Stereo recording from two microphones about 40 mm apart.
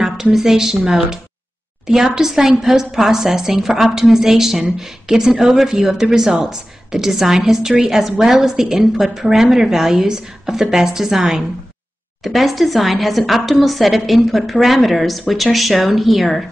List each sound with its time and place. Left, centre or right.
0.0 s a woman's voice: centre
5.3 s speech: right
5.6 s a woman's voice: centre
12.2 s a woman's voice: centre